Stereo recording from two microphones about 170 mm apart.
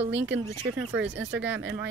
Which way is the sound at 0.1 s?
90° right.